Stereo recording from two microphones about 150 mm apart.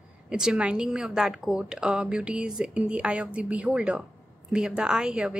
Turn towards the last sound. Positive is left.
turn(degrees=-5)  # may be behind; listen again after turning